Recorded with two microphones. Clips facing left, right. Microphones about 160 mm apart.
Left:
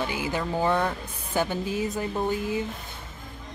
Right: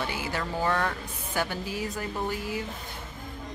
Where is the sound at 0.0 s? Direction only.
15° left (ahead or behind).